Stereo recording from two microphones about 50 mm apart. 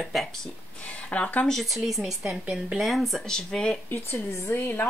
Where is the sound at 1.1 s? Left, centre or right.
Left.